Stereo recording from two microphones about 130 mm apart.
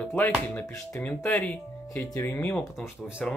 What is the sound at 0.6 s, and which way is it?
Speech, 20° left (ahead or behind).